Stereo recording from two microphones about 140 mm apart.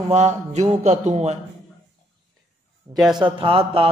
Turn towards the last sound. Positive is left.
turn(degrees=-40)  # may be behind; listen again after turning